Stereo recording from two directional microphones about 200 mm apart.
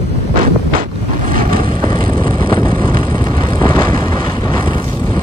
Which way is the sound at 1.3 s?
45° right (ahead or behind).